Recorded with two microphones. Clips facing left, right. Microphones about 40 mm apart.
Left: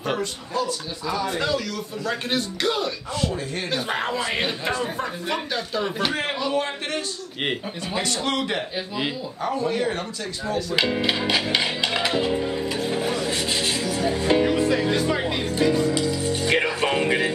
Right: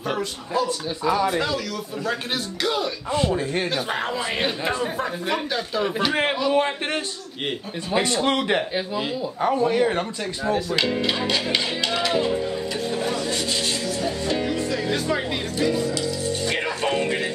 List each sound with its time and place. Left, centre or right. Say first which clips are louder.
0.0 s speech: even; centre
0.7 s speech: right 5 dB; right
1.2 s speech: right 1 dB; centre
3.2 s speech: right 5 dB; right
3.7 s speech: even; centre
6.5 s speech: right 3 dB; right
10.8 s music: even; centre
14.9 s speech: left 1 dB; centre
15.5 s music: left 2 dB; centre